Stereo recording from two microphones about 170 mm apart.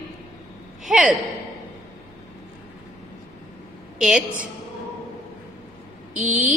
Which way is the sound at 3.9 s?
5° right (ahead or behind).